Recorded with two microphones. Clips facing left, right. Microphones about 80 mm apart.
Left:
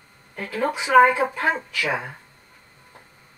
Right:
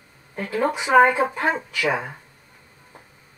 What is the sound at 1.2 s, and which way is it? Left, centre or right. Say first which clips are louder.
Speech: right 1 dB; centre.